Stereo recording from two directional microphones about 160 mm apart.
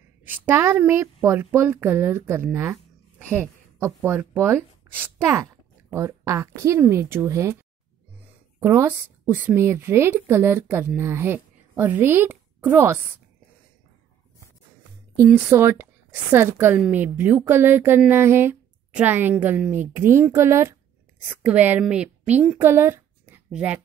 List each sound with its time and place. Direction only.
0.2 s speech: 10° right (ahead or behind)
8.5 s a woman's voice: 15° right (ahead or behind)
15.2 s speech: 15° right (ahead or behind)